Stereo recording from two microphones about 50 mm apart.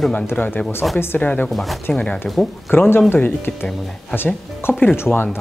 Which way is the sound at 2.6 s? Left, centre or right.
Left.